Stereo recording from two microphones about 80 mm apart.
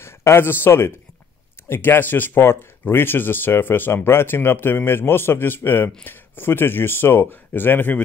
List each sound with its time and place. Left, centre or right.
0.0 s speech: left